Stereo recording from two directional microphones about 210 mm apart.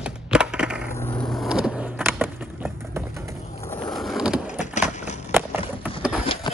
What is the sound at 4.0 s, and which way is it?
Vehicle, centre (ahead or behind).